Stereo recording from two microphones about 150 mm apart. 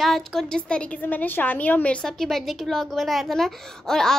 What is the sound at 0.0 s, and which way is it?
A woman's voice, centre (ahead or behind).